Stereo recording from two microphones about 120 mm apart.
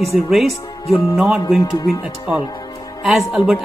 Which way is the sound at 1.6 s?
35° left (ahead or behind).